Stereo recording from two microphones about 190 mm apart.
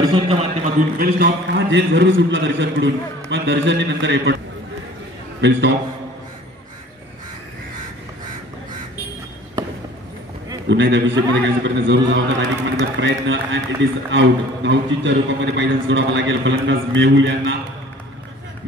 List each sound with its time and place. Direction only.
0.1 s a man's voice: 30° right (ahead or behind)
0.9 s a man's voice: 65° right (ahead or behind)
5.4 s a man's voice: 70° right (ahead or behind)
10.7 s a man's voice: 70° right (ahead or behind)